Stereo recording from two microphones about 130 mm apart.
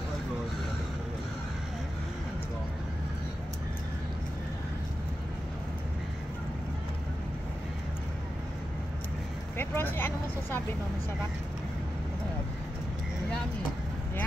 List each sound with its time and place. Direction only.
9.6 s vehicle: 15° left (ahead or behind)